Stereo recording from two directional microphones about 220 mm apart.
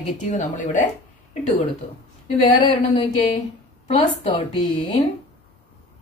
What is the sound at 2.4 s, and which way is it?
A woman's voice, 20° left (ahead or behind).